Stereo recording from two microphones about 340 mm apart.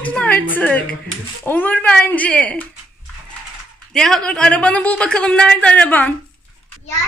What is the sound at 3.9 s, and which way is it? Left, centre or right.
A woman's voice, centre.